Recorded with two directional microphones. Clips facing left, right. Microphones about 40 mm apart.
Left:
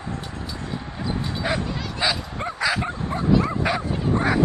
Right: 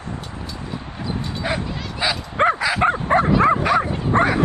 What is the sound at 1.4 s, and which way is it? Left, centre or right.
Bow-wow, centre.